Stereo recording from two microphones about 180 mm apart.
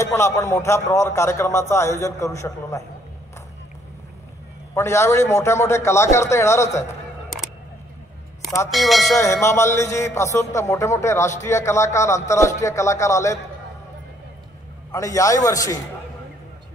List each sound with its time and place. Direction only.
0.0 s a man's voice: 15° left (ahead or behind)
4.7 s a man's voice: 15° left (ahead or behind)
8.6 s speech: centre (ahead or behind)
9.2 s a man's voice: 15° left (ahead or behind)
14.9 s a man's voice: 15° left (ahead or behind)